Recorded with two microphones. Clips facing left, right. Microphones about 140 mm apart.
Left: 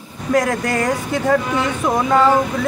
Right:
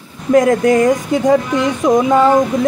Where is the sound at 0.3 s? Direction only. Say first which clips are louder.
Right 7 dB; 20° right (ahead or behind).